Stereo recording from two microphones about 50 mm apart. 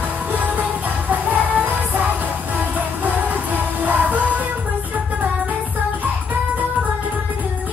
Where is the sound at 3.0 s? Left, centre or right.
Right.